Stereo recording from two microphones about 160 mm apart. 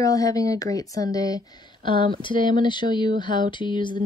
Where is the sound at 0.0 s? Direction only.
20° left (ahead or behind).